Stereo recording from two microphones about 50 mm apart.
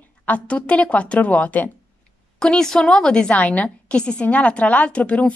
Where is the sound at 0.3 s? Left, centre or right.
Left.